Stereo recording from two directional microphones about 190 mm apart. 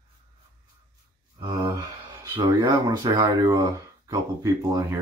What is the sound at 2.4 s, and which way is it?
Speech, 25° right (ahead or behind).